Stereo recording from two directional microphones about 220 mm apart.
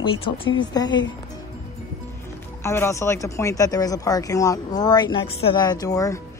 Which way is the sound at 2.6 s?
15° left (ahead or behind).